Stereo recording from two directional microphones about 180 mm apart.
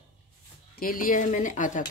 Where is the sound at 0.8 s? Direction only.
50° left (ahead or behind).